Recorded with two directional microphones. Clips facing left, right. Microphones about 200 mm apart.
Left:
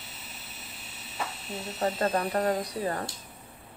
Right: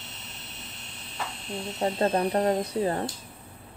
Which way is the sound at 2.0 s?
30° right (ahead or behind).